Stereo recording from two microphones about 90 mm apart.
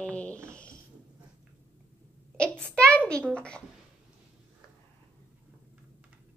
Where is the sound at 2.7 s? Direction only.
10° left (ahead or behind).